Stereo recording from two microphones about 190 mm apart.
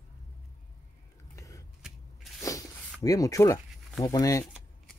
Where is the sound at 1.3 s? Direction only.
15° left (ahead or behind).